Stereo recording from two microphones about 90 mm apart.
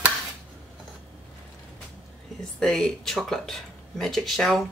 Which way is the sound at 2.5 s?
5° left (ahead or behind).